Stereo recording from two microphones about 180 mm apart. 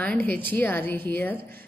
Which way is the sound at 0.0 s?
10° left (ahead or behind).